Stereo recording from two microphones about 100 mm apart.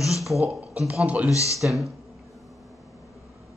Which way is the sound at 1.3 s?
30° left (ahead or behind).